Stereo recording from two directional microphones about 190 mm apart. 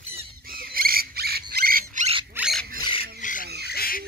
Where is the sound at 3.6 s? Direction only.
55° left (ahead or behind).